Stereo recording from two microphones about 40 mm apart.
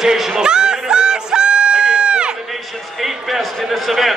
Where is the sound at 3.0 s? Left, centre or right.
Centre.